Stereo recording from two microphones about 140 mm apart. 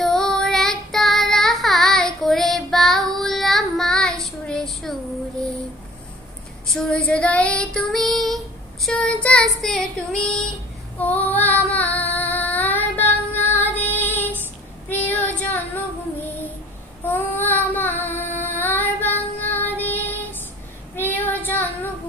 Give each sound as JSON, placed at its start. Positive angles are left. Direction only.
{"t": 0.0, "sound": "child singing", "side_deg": 5}
{"t": 6.7, "sound": "child singing", "side_deg": 5}
{"t": 13.9, "sound": "female singing", "side_deg": 15}
{"t": 14.9, "sound": "child singing", "side_deg": 15}
{"t": 17.0, "sound": "child singing", "side_deg": 10}
{"t": 18.0, "sound": "female singing", "side_deg": 15}
{"t": 19.5, "sound": "music", "side_deg": 15}
{"t": 20.9, "sound": "child singing", "side_deg": 15}